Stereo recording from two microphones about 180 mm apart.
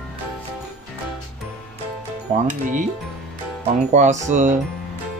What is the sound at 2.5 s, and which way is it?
Speech, 45° right (ahead or behind).